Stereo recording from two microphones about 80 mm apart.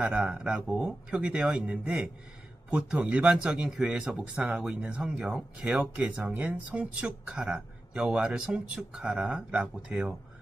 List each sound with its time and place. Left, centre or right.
0.0 s speech: centre
5.3 s speech: centre
5.8 s speech: centre